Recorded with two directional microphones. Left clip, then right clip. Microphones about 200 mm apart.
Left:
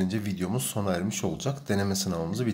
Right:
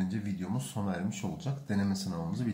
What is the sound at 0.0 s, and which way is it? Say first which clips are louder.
Speech: left 7 dB; 50° left (ahead or behind).